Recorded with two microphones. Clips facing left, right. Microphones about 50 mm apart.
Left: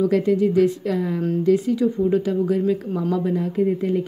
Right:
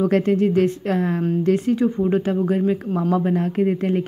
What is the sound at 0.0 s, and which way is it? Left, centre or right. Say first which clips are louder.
Speech: even; right.